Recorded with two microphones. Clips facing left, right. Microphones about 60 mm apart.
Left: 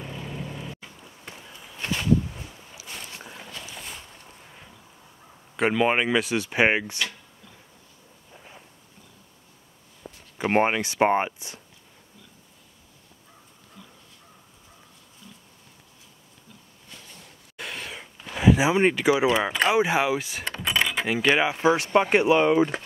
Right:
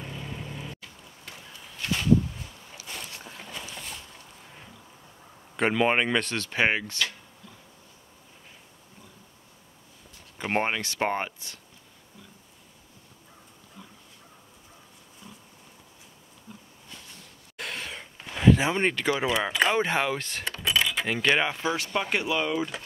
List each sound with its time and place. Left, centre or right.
0.0 s vehicle: centre
0.7 s run: left
1.8 s a sound: left
3.1 s boat: left
3.3 s boat: centre
5.6 s speech: centre
10.3 s speech: centre
13.8 s dog: centre
15.2 s a sound: right
17.6 s a sound: centre
18.3 s speech: centre
20.5 s keys jangling: left
20.8 s speech: centre
21.6 s speech: left